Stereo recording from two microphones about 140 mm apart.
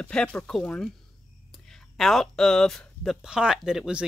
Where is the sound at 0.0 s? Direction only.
5° left (ahead or behind).